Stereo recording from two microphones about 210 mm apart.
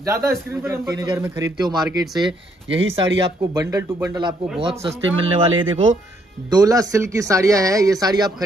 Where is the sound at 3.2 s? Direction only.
15° right (ahead or behind).